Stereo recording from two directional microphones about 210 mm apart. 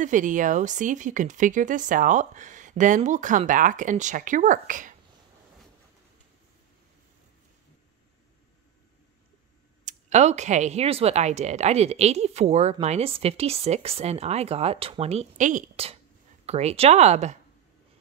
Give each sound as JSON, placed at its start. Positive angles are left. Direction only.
{"t": 0.0, "sound": "speech", "side_deg": -35}
{"t": 9.8, "sound": "speech", "side_deg": -35}